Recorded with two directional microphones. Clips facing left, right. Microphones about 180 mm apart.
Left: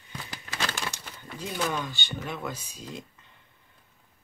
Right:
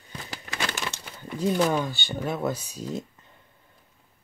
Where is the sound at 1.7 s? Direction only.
40° right (ahead or behind).